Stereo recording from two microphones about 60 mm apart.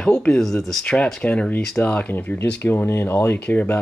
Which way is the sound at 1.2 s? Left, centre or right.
Left.